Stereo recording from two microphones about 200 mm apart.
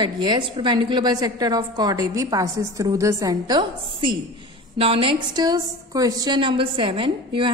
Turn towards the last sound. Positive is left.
turn(degrees=-25)  # may be behind; listen again after turning